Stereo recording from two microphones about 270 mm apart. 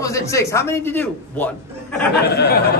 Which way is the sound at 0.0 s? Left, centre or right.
Centre.